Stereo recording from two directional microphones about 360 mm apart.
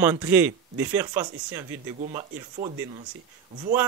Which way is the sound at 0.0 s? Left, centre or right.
Centre.